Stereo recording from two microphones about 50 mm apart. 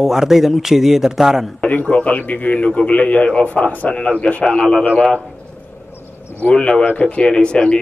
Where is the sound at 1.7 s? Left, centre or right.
Left.